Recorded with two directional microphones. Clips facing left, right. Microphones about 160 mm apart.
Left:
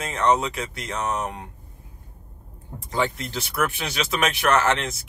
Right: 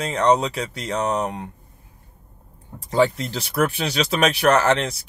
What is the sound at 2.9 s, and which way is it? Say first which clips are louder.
Speech: right 6 dB; 35° right (ahead or behind).